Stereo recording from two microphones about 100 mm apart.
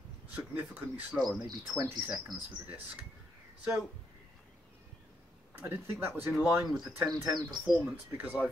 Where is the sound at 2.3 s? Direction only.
45° right (ahead or behind).